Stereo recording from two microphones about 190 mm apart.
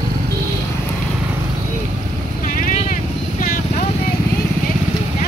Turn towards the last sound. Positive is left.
turn(degrees=45)  # may be behind; listen again after turning